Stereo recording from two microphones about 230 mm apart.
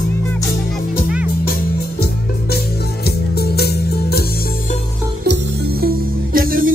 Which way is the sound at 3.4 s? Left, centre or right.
Left.